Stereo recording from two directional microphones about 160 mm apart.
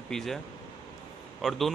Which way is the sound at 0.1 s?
Centre (ahead or behind).